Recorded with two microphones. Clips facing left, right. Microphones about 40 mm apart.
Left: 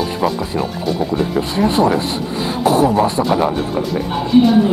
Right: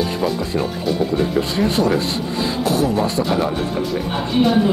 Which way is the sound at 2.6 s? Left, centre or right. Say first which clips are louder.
Left 6 dB; left.